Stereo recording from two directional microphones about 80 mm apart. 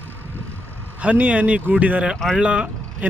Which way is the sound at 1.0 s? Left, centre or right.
Centre.